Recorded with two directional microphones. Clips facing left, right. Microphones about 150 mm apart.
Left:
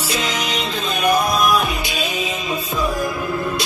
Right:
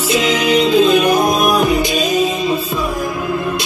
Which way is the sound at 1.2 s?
50° right (ahead or behind).